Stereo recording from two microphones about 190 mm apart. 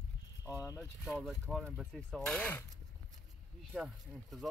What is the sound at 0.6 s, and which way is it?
Speech, 10° right (ahead or behind).